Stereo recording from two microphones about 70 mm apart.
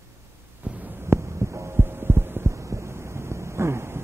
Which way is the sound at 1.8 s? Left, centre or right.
Right.